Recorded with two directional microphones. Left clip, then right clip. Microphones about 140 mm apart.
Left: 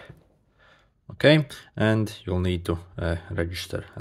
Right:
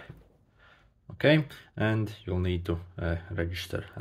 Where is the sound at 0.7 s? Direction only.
40° left (ahead or behind).